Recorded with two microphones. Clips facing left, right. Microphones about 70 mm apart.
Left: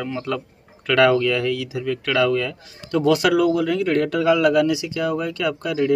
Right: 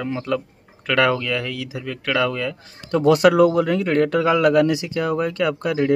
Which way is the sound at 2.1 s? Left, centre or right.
Centre.